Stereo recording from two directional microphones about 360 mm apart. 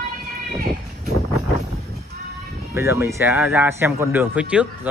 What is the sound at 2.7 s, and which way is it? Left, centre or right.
Speech, centre.